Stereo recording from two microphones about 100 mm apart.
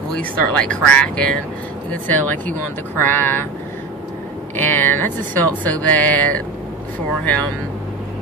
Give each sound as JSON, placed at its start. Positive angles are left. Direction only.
{"t": 0.1, "sound": "speech", "side_deg": 10}
{"t": 4.6, "sound": "speech", "side_deg": 20}